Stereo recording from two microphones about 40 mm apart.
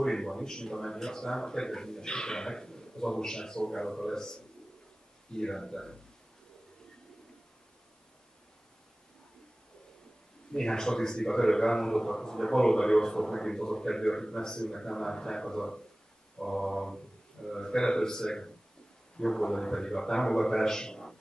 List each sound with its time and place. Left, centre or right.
0.0 s a man's voice: centre
10.5 s a man's voice: centre